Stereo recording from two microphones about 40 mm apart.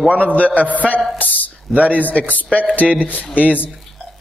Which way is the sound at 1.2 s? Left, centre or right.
Left.